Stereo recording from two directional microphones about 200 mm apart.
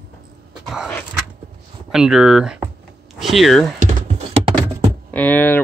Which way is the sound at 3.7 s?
35° right (ahead or behind).